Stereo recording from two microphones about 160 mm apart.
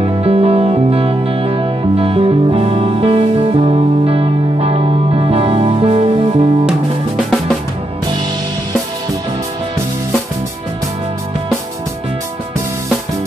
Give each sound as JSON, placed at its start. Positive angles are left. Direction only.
{"t": 0.0, "sound": "music", "side_deg": -35}